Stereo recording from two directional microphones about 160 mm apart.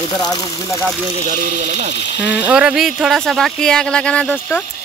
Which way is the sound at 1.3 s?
55° right (ahead or behind).